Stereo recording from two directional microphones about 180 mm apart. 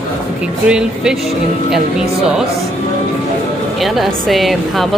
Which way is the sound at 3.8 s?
Centre (ahead or behind).